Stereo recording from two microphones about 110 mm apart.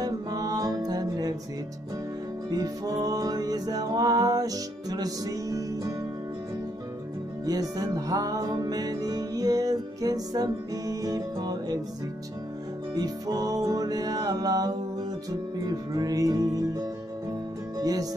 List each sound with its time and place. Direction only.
0.0 s music: 35° right (ahead or behind)
2.5 s music: 35° right (ahead or behind)
7.4 s music: 35° right (ahead or behind)
12.9 s music: 35° right (ahead or behind)